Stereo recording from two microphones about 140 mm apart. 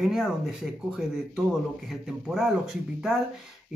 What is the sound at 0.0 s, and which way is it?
Speech, centre (ahead or behind).